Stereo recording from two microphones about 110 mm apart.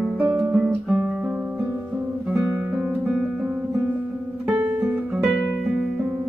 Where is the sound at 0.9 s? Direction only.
15° right (ahead or behind).